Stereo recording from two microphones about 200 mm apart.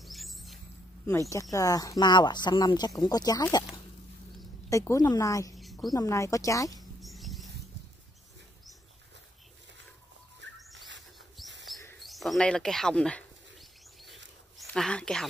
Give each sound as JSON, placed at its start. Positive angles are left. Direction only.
{"t": 0.0, "sound": "rodents", "side_deg": 0}
{"t": 1.3, "sound": "speech", "side_deg": 15}
{"t": 4.6, "sound": "a woman's voice", "side_deg": 15}
{"t": 5.6, "sound": "a sound", "side_deg": 0}
{"t": 5.9, "sound": "a woman's voice", "side_deg": 15}
{"t": 6.8, "sound": "rodents", "side_deg": 0}
{"t": 10.6, "sound": "rodents", "side_deg": 0}
{"t": 11.4, "sound": "bird", "side_deg": 0}
{"t": 14.6, "sound": "speech", "side_deg": 5}